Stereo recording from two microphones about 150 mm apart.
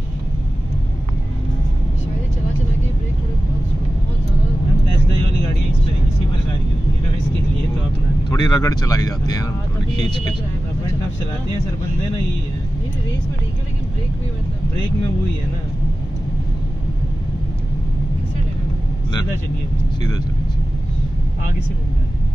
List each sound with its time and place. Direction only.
8.3 s speech: 25° left (ahead or behind)